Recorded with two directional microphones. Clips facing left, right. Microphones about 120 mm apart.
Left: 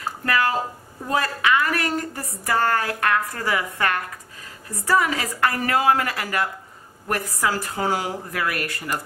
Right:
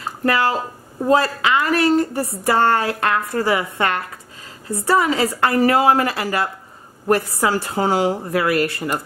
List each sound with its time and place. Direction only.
0.0 s a woman's voice: 30° right (ahead or behind)